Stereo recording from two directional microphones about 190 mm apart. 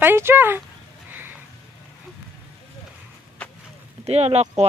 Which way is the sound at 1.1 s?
10° right (ahead or behind).